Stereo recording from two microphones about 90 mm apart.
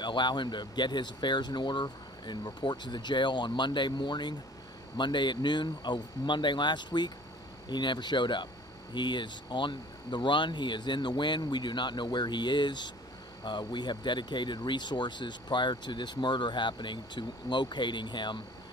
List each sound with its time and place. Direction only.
0.0 s speech: 55° left (ahead or behind)